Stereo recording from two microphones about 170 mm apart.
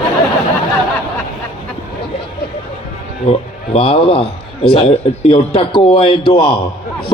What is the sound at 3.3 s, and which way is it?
A man's voice, 35° left (ahead or behind).